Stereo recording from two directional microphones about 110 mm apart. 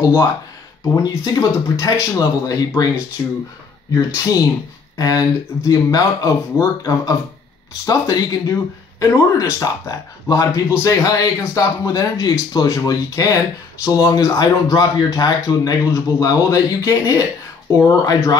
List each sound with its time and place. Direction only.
0.0 s speech: 30° left (ahead or behind)
3.9 s speech: 35° left (ahead or behind)